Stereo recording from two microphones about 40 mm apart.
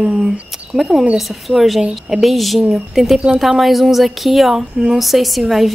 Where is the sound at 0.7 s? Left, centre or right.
Right.